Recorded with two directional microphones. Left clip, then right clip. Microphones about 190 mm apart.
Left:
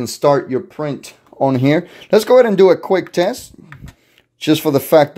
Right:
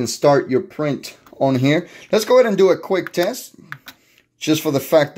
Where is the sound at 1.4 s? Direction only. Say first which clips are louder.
Left 2 dB; 25° left (ahead or behind).